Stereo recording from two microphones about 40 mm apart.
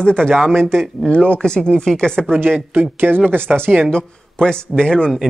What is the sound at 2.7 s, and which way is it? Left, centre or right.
Speech, right.